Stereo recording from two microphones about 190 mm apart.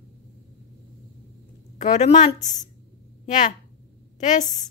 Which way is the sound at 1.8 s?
40° left (ahead or behind).